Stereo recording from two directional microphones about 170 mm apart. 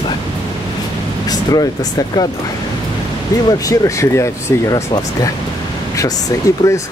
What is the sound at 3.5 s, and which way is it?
Speech, 20° left (ahead or behind).